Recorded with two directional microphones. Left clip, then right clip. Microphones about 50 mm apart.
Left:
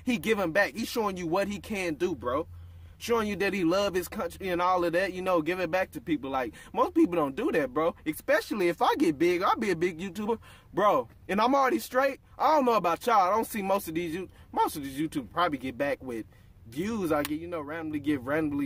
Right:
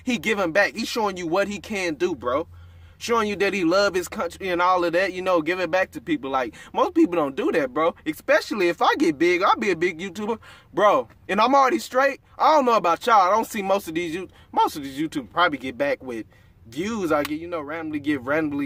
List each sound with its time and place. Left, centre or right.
0.0 s speech: centre
4.0 s speech: centre
6.0 s speech: centre
9.6 s speech: left; by 13.4 s centre
13.4 s speech: centre
13.7 s speech: centre
13.9 s speech: centre
14.7 s speech: centre